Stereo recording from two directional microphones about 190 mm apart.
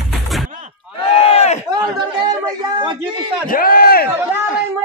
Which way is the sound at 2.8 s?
25° right (ahead or behind).